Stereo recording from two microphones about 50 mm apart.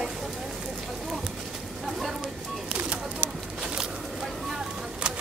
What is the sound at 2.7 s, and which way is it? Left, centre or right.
Bird, right.